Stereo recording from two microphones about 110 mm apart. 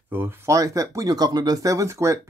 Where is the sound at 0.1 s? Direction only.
20° right (ahead or behind).